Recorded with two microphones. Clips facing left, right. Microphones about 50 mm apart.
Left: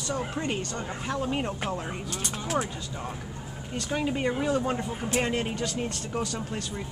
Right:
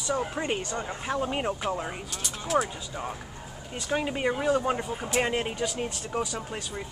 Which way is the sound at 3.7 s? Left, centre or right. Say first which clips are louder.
Even; centre.